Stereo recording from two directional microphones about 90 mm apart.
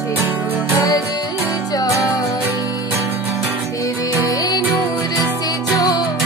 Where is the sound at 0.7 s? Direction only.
40° left (ahead or behind).